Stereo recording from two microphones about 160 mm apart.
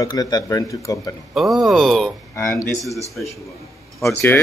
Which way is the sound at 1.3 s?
Centre (ahead or behind).